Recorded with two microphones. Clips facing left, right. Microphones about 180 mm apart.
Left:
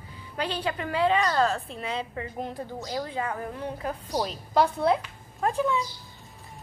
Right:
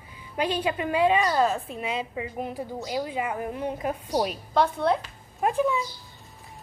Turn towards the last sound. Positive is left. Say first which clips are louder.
# right 2 dB
turn(degrees=-15)  # may be behind; listen again after turning